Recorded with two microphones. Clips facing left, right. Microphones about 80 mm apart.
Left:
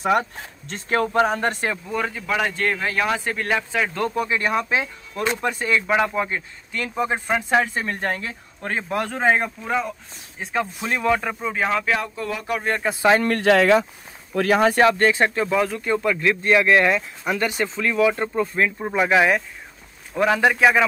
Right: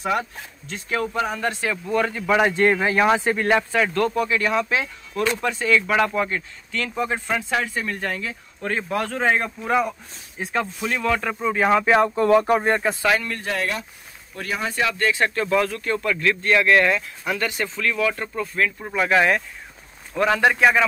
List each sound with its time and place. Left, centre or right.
0.0 s speech: left
1.9 s a man's voice: centre
2.2 s speech: centre
3.9 s speech: centre
5.9 s speech: centre; by 8.4 s left
8.9 s speech: left
9.6 s a man's voice: centre
11.0 s speech: centre
11.4 s a man's voice: centre
11.9 s speech: right
12.8 s a man's voice: centre
13.4 s speech: left
14.8 s speech: left
15.4 s a man's voice: centre